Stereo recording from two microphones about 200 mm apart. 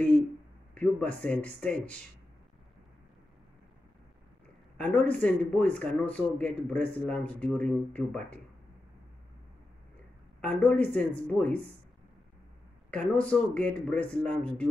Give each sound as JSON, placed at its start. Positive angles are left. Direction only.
{"t": 0.7, "sound": "a man's voice", "side_deg": 5}
{"t": 4.7, "sound": "a man's voice", "side_deg": 5}
{"t": 10.4, "sound": "a man's voice", "side_deg": 5}
{"t": 12.9, "sound": "a man's voice", "side_deg": 5}